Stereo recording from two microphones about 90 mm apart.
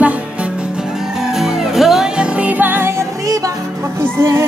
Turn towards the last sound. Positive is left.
turn(degrees=-30)  # may be behind; listen again after turning